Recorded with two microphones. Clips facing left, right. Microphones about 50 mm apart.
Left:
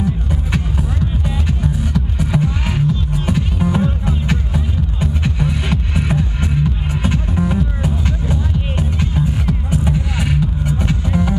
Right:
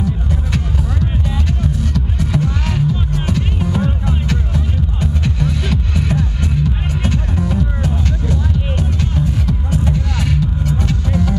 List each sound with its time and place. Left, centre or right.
0.0 s music: centre